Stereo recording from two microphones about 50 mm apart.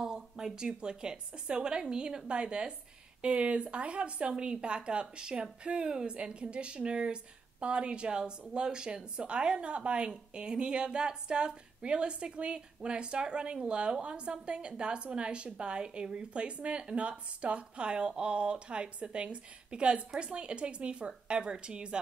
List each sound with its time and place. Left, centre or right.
0.0 s a woman's voice: centre